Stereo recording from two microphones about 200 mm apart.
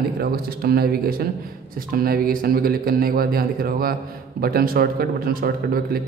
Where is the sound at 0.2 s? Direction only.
50° right (ahead or behind).